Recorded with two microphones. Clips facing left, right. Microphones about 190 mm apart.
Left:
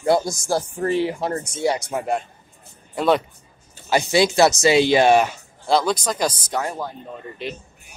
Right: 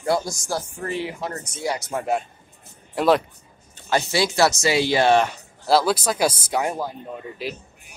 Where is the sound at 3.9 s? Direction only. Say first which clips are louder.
Left 4 dB; 15° left (ahead or behind).